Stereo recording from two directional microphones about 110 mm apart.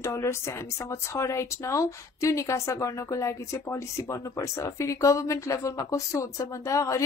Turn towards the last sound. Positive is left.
turn(degrees=30)  # may be behind; listen again after turning